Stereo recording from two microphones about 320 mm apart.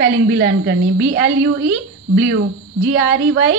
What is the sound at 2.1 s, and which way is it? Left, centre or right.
A woman's voice, right.